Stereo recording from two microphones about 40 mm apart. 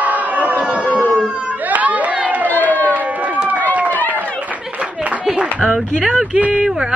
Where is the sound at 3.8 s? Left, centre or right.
Left.